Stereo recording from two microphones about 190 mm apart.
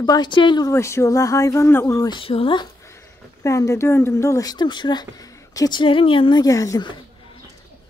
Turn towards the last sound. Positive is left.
turn(degrees=20)  # may be behind; listen again after turning